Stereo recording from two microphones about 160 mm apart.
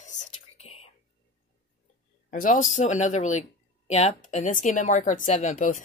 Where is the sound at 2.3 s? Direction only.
55° left (ahead or behind).